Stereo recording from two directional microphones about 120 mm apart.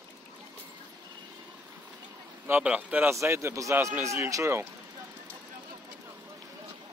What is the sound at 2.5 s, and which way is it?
Speech, 10° right (ahead or behind).